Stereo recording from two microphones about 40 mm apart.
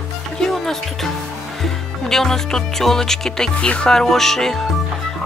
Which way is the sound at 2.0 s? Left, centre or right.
Centre.